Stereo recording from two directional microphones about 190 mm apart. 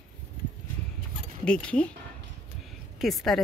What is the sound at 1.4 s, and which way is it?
Speech, 5° left (ahead or behind).